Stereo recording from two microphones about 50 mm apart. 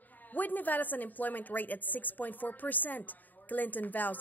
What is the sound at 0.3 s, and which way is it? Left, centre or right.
A woman's voice, left.